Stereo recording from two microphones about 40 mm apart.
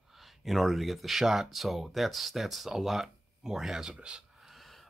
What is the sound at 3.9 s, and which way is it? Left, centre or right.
Speech, right.